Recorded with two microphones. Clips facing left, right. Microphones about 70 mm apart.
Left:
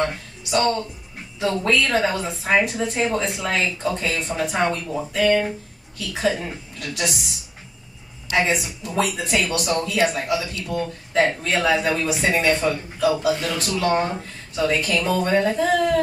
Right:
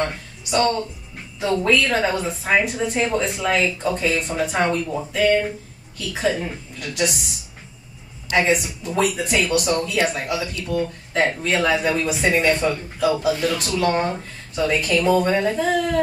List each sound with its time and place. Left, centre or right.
0.0 s a woman's voice: centre
8.3 s a woman's voice: centre